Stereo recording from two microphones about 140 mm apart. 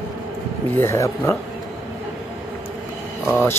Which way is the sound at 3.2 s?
15° left (ahead or behind).